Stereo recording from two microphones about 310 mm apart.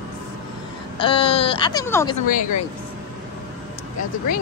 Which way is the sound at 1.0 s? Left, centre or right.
Centre.